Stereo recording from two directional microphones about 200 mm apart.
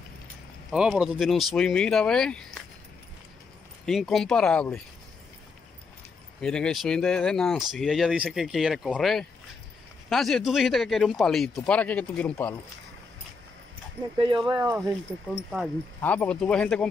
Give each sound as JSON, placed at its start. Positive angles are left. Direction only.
{"t": 0.7, "sound": "speech", "side_deg": -5}
{"t": 3.8, "sound": "speech", "side_deg": 0}
{"t": 6.4, "sound": "speech", "side_deg": 5}
{"t": 14.1, "sound": "speech", "side_deg": -25}
{"t": 14.5, "sound": "speech", "side_deg": -10}
{"t": 16.0, "sound": "speech", "side_deg": 10}